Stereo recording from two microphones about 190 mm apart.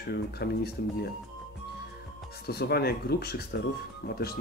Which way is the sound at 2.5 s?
55° left (ahead or behind).